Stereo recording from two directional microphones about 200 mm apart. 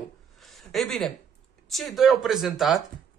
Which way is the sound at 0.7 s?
Centre (ahead or behind).